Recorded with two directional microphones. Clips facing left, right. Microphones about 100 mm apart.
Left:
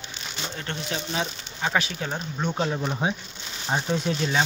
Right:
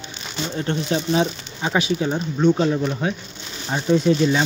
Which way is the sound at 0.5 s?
20° right (ahead or behind).